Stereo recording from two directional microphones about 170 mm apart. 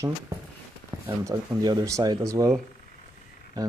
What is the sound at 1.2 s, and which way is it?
Speech, 20° right (ahead or behind).